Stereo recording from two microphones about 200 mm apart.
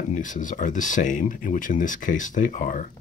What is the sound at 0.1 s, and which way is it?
Speech, 40° left (ahead or behind).